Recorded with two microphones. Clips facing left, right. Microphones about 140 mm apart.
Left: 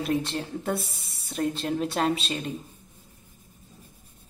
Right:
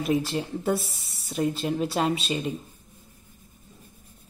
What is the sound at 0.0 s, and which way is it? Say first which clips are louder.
A woman's voice: right 2 dB; centre (ahead or behind).